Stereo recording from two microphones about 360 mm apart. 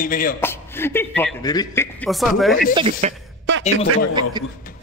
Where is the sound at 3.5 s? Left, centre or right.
Right.